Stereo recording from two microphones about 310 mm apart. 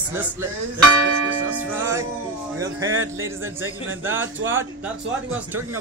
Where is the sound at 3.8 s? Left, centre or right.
Right.